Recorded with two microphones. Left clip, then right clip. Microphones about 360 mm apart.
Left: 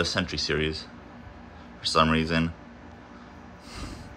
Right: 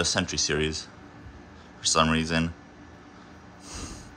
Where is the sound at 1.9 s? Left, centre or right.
Centre.